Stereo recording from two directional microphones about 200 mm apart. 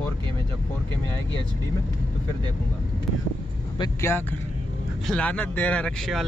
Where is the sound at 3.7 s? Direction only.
15° left (ahead or behind).